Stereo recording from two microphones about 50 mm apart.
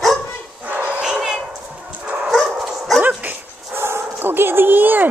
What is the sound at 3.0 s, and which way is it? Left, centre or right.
Dog, right.